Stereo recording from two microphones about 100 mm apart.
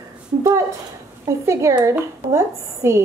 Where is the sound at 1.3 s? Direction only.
30° right (ahead or behind).